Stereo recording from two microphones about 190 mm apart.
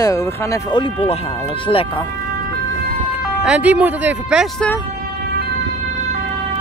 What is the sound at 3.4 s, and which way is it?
Speech, 5° right (ahead or behind).